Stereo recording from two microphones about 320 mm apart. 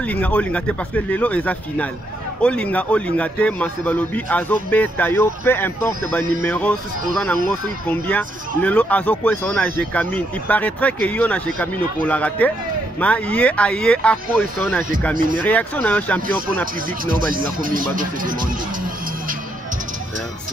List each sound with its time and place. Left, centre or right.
0.0 s speech: centre
7.9 s speech: centre
15.3 s speech: centre
17.0 s speech: right